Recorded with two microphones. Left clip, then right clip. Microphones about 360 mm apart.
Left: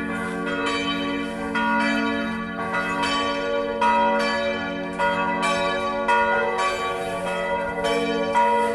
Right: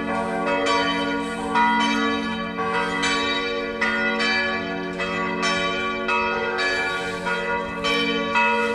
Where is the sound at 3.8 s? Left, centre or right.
Centre.